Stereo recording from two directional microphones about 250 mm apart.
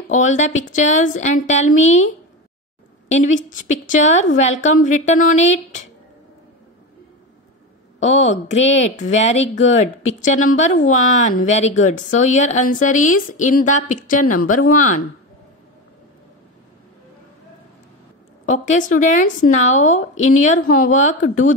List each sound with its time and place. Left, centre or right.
0.1 s a woman's voice: left
3.1 s a woman's voice: left
8.0 s a woman's voice: left
18.4 s a woman's voice: left